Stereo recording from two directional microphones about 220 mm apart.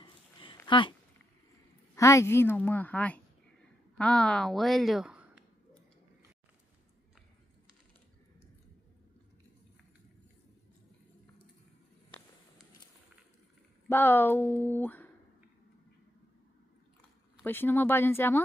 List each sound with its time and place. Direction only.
0.0 s a sound: 20° left (ahead or behind)
0.7 s speech: 20° left (ahead or behind)
2.0 s a woman's voice: 15° left (ahead or behind); by 5.4 s 5° right (ahead or behind)
13.8 s a woman's voice: 10° left (ahead or behind)
17.4 s a woman's voice: 10° left (ahead or behind)